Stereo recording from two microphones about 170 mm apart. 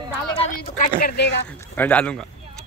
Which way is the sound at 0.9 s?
70° left (ahead or behind).